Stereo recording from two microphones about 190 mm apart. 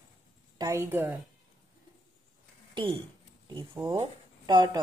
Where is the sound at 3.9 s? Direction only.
25° right (ahead or behind).